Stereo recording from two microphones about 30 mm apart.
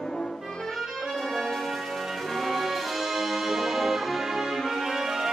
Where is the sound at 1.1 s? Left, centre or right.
Centre.